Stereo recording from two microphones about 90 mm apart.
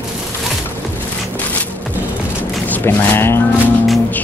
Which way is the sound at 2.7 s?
25° left (ahead or behind).